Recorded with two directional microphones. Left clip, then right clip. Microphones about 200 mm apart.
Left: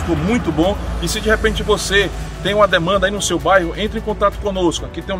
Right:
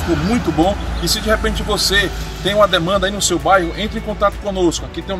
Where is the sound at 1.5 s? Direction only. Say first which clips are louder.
Even; 30° left (ahead or behind).